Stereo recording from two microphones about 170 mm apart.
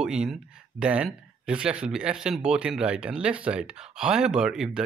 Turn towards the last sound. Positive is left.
turn(degrees=-5)  # may be behind; listen again after turning